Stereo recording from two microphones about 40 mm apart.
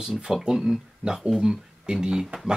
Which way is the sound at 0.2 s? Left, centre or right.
Centre.